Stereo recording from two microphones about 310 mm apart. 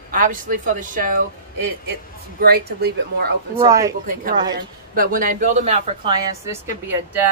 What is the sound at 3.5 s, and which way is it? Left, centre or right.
Speech, centre.